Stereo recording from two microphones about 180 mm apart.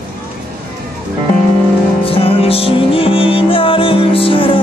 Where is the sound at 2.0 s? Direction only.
30° left (ahead or behind).